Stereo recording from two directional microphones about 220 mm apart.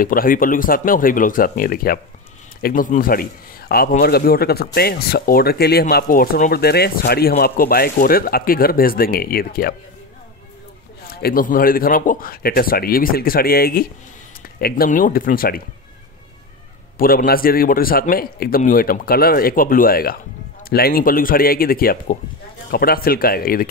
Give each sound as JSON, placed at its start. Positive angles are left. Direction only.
{"t": 0.0, "sound": "a man's voice", "side_deg": 40}
{"t": 11.1, "sound": "a man's voice", "side_deg": 45}
{"t": 17.0, "sound": "a man's voice", "side_deg": 40}